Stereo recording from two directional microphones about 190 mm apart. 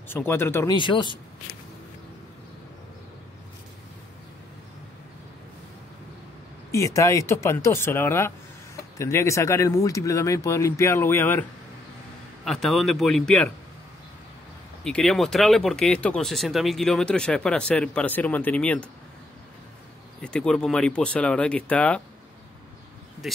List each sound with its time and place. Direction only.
0.1 s speech: 10° left (ahead or behind)
0.7 s a man's voice: 25° left (ahead or behind)
6.7 s speech: 15° left (ahead or behind)
12.4 s speech: centre (ahead or behind)
14.8 s speech: 5° left (ahead or behind)
20.2 s speech: 5° left (ahead or behind)
23.2 s speech: centre (ahead or behind)